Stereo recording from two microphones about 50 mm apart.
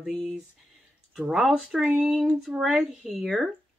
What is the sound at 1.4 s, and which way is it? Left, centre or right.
Speech, centre.